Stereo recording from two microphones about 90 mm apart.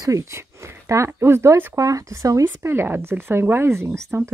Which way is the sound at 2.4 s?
25° right (ahead or behind).